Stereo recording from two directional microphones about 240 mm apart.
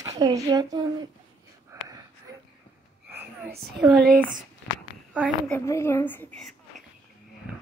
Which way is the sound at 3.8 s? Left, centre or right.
Centre.